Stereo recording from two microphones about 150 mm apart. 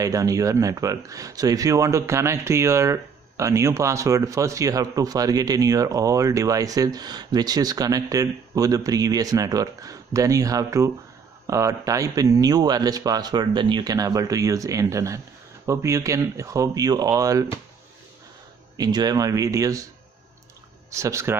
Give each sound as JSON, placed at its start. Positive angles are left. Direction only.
{"t": 0.0, "sound": "speech", "side_deg": -20}
{"t": 18.8, "sound": "speech", "side_deg": -25}
{"t": 20.9, "sound": "speech", "side_deg": -20}